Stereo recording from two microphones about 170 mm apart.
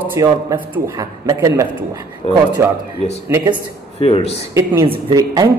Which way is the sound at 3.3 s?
25° right (ahead or behind).